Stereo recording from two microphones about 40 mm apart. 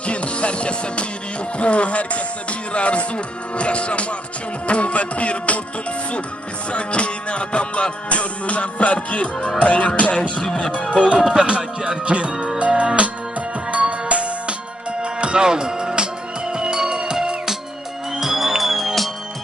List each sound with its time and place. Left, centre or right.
0.0 s music: left
3.5 s speech: left
4.6 s music: left
6.7 s music: left
10.4 s speech: left
11.3 s music: right
18.1 s music: centre